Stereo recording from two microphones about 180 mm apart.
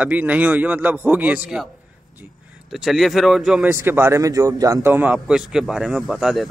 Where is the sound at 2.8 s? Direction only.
Centre (ahead or behind).